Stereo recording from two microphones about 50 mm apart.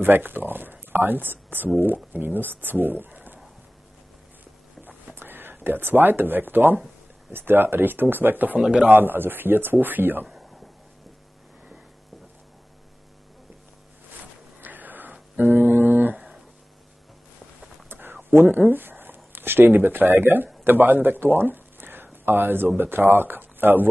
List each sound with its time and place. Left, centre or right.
0.0 s speech: right
5.1 s speech: right
8.5 s a man's voice: centre
8.8 s speech: right
14.6 s a sound: right
18.3 s speech: right